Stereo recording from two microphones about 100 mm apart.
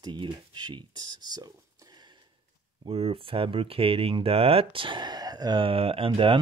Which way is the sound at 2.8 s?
75° right (ahead or behind).